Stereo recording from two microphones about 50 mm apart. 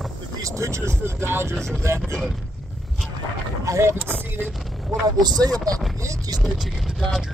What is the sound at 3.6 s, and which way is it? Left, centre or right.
Vehicle, right.